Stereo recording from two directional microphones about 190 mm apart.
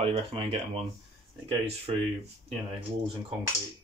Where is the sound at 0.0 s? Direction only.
30° right (ahead or behind).